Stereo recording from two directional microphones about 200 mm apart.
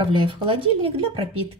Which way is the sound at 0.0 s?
25° right (ahead or behind).